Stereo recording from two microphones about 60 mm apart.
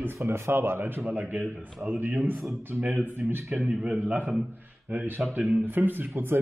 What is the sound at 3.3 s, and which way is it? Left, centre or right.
Speech, right.